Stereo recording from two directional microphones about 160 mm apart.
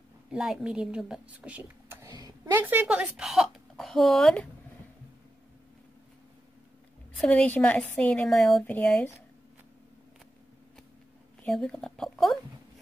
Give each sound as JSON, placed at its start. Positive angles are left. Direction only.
{"t": 0.3, "sound": "a woman's voice", "side_deg": 0}
{"t": 2.0, "sound": "a sound", "side_deg": -25}
{"t": 2.5, "sound": "a woman's voice", "side_deg": -10}
{"t": 7.2, "sound": "a woman's voice", "side_deg": 5}
{"t": 11.4, "sound": "a woman's voice", "side_deg": 5}